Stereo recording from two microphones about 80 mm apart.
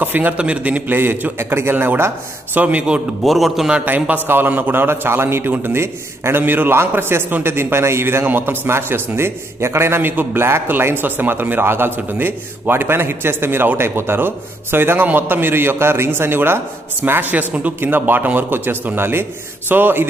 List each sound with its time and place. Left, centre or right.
0.0 s a man's voice: right
2.6 s a man's voice: centre
3.3 s a man's voice: centre
3.7 s a man's voice: right